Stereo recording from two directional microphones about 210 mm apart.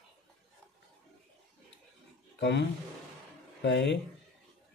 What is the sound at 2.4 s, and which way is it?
Speech, 55° left (ahead or behind).